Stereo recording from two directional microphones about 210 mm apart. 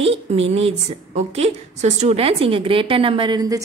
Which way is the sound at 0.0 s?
30° right (ahead or behind).